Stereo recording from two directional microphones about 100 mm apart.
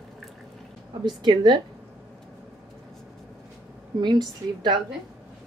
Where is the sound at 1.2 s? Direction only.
50° right (ahead or behind).